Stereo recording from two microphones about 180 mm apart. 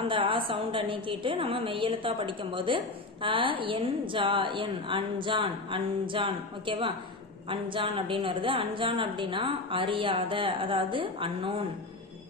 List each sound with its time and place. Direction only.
0.1 s a woman's voice: 30° right (ahead or behind)